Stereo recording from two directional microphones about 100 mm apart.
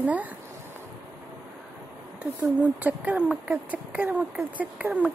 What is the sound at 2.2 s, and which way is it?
Speech, 15° right (ahead or behind).